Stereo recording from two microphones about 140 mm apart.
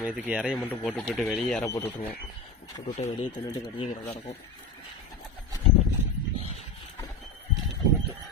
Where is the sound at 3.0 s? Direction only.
45° left (ahead or behind).